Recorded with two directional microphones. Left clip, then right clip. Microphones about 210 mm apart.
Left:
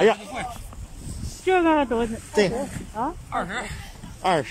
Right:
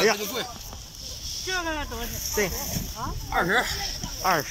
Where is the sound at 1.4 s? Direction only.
45° left (ahead or behind).